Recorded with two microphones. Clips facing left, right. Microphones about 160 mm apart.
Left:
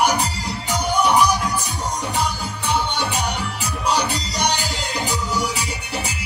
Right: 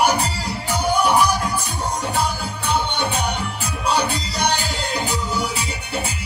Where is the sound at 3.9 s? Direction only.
55° right (ahead or behind).